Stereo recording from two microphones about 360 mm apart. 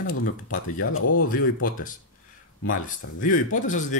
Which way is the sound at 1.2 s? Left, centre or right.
Left.